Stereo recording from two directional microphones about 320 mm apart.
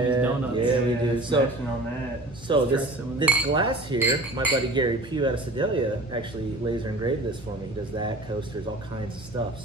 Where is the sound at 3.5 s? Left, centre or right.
Centre.